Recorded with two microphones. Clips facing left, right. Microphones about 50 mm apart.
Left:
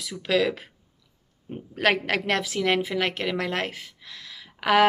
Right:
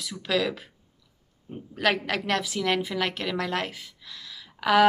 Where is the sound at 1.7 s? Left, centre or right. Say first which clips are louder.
Left 2 dB; left.